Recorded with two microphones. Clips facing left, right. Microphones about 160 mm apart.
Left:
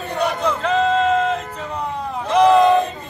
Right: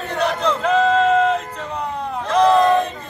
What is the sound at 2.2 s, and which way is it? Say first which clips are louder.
Battle cry: left 2 dB; 10° left (ahead or behind).